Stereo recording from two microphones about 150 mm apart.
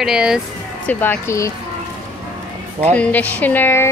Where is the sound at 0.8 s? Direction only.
15° left (ahead or behind).